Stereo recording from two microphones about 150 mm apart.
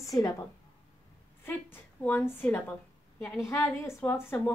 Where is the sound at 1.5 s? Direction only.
15° left (ahead or behind).